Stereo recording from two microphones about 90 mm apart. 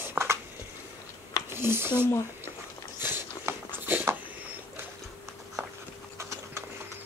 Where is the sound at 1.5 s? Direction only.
25° right (ahead or behind).